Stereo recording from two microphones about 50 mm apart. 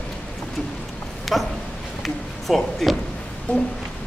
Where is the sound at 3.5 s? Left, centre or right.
Left.